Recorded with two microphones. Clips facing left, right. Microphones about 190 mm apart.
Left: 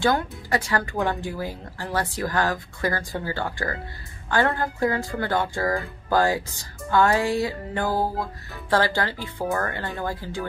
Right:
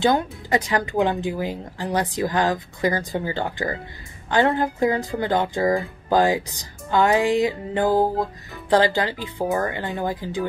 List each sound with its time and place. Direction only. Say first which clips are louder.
0.0 s speech: right 3 dB; 20° right (ahead or behind)